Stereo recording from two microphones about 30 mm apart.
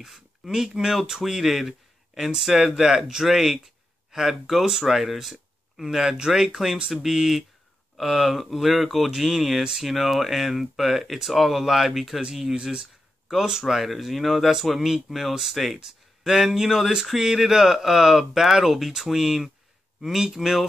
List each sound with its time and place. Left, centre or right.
0.4 s speech: centre
12.5 s speech: right
13.5 s speech: centre
13.9 s speech: centre